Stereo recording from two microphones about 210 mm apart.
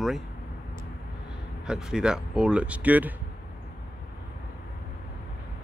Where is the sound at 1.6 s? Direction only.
5° right (ahead or behind).